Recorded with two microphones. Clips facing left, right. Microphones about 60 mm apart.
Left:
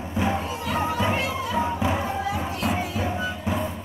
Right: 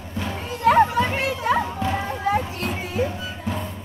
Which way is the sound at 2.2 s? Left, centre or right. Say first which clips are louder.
Right 4 dB; right.